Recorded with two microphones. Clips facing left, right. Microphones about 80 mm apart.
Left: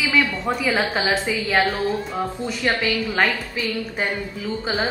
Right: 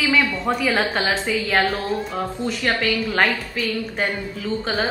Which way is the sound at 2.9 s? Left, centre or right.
Centre.